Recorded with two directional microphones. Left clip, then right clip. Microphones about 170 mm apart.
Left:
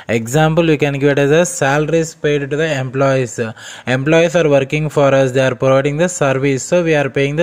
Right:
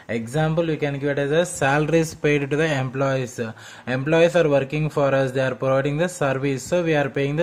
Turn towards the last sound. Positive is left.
turn(degrees=20)  # may be behind; listen again after turning